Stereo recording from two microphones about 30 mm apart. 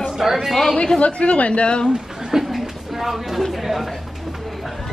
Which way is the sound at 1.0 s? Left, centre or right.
Left.